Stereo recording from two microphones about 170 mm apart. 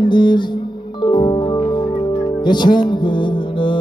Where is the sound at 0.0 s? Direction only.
25° left (ahead or behind).